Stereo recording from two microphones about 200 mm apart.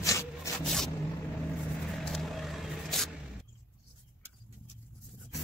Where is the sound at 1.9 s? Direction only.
Centre (ahead or behind).